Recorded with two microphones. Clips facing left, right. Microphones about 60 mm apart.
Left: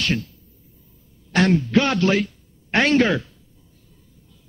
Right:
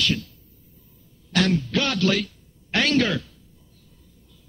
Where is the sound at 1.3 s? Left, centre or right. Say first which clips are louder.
Left 5 dB; left.